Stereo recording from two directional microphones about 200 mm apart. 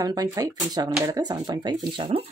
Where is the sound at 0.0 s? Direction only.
20° right (ahead or behind).